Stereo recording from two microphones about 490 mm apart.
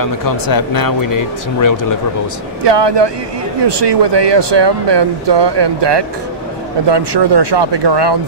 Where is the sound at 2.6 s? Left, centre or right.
Right.